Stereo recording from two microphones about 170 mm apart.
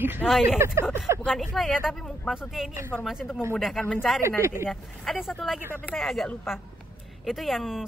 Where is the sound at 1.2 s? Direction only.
Centre (ahead or behind).